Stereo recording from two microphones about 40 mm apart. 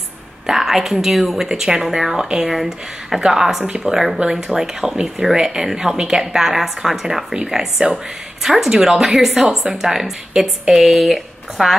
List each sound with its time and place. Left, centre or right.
0.5 s a woman's voice: centre